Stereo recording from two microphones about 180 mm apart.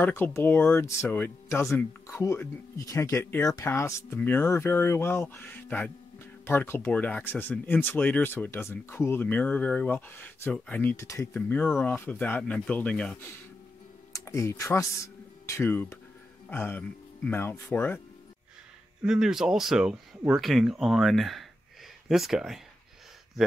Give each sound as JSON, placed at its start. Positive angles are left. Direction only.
{"t": 0.0, "sound": "speech", "side_deg": 10}
{"t": 14.1, "sound": "speech", "side_deg": 15}
{"t": 19.0, "sound": "speech", "side_deg": -5}